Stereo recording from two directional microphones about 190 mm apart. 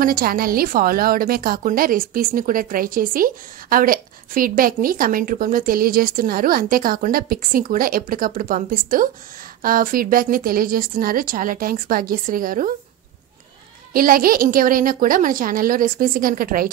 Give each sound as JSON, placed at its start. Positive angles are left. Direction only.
{"t": 0.0, "sound": "a woman's voice", "side_deg": -50}
{"t": 13.9, "sound": "a woman's voice", "side_deg": -50}